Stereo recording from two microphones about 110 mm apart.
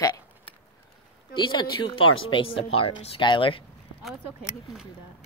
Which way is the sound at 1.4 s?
45° left (ahead or behind).